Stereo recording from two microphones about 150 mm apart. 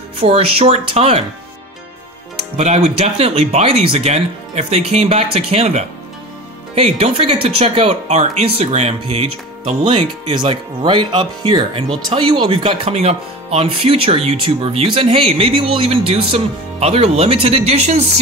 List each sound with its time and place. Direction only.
0.2 s speech: 40° right (ahead or behind)
2.5 s speech: 45° right (ahead or behind)